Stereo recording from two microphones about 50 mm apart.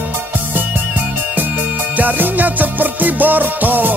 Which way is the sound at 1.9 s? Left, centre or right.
Right.